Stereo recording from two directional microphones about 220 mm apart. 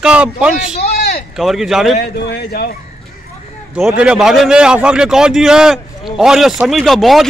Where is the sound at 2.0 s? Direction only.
50° left (ahead or behind).